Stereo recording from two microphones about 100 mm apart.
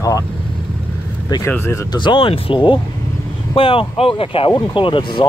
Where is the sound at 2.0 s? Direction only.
55° left (ahead or behind).